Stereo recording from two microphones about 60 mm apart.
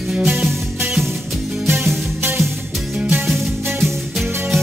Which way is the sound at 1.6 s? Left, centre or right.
Right.